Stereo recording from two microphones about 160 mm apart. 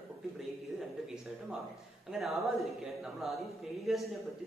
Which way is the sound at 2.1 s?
Centre (ahead or behind).